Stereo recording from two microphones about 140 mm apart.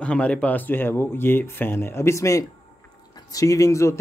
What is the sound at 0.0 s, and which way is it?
Speech, 10° left (ahead or behind).